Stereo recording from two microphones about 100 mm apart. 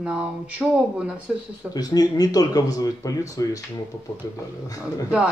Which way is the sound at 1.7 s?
40° left (ahead or behind).